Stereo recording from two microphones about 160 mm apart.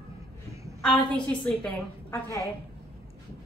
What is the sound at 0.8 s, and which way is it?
A woman's voice, 5° left (ahead or behind).